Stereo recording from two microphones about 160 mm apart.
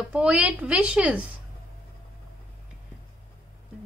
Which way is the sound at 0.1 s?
5° right (ahead or behind).